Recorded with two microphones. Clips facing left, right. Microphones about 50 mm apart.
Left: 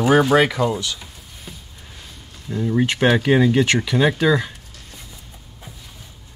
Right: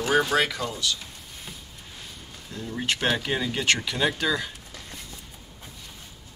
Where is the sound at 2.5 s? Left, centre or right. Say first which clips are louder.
Left 9 dB; left.